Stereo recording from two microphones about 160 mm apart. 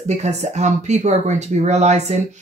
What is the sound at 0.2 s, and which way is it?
Speech, 45° right (ahead or behind).